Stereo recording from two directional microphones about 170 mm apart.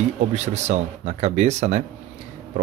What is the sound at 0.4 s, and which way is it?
Speech, 40° right (ahead or behind).